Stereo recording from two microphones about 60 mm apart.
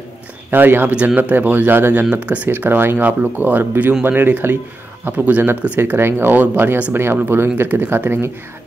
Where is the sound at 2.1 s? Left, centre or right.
Right.